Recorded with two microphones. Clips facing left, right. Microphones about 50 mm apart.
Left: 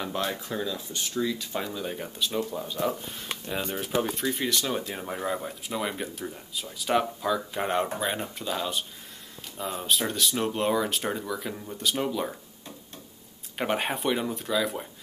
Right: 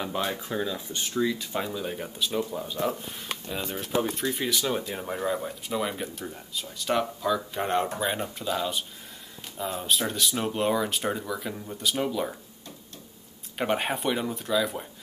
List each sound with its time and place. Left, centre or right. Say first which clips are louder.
0.0 s speech: right 1 dB; centre
1.5 s speech: right 1 dB; centre
13.6 s speech: right 1 dB; centre